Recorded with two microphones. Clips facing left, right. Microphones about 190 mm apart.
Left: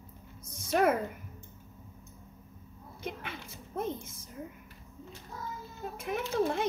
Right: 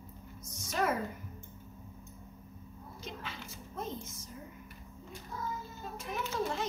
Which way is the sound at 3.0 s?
60° left (ahead or behind).